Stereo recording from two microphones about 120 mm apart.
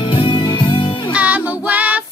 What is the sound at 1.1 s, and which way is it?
Child singing, 10° right (ahead or behind).